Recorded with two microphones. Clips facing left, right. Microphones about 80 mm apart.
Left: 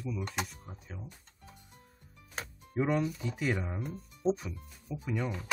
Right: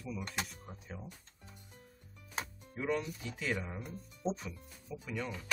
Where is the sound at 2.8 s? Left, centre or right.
Left.